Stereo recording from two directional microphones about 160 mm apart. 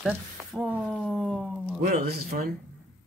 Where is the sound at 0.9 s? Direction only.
Centre (ahead or behind).